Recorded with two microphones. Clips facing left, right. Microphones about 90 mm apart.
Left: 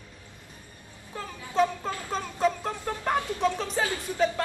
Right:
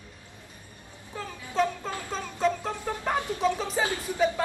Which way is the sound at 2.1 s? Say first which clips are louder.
Left 1 dB; 5° left (ahead or behind).